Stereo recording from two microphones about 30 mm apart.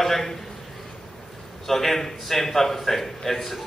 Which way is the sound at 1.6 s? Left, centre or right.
Centre.